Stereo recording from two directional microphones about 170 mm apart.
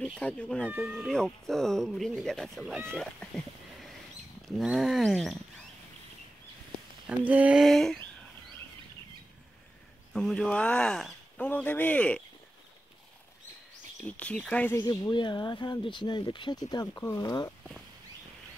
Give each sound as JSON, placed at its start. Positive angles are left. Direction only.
{"t": 0.2, "sound": "speech", "side_deg": 5}
{"t": 0.7, "sound": "speech", "side_deg": -10}
{"t": 2.9, "sound": "cat", "side_deg": 5}
{"t": 4.5, "sound": "speech", "side_deg": 0}
{"t": 7.1, "sound": "speech", "side_deg": -10}
{"t": 10.1, "sound": "speech", "side_deg": 5}
{"t": 14.0, "sound": "speech", "side_deg": 5}
{"t": 14.8, "sound": "speech", "side_deg": 25}